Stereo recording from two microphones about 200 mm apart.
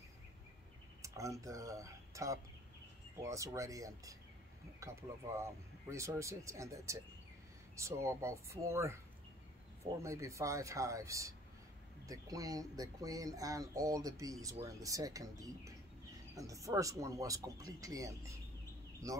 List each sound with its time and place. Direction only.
1.0 s speech: 15° right (ahead or behind)
5.4 s speech: 15° right (ahead or behind)
10.0 s speech: 15° right (ahead or behind)